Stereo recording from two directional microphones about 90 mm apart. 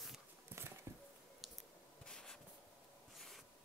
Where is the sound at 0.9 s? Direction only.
30° right (ahead or behind).